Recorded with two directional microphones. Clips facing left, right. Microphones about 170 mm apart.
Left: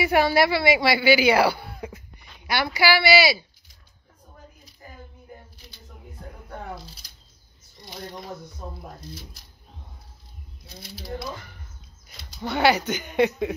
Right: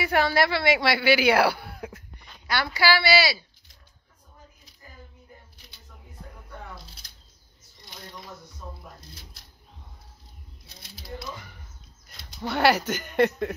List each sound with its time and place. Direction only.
0.0 s speech: 10° left (ahead or behind)
1.9 s speech: 10° left (ahead or behind)
8.6 s speech: 55° left (ahead or behind)
12.2 s speech: centre (ahead or behind)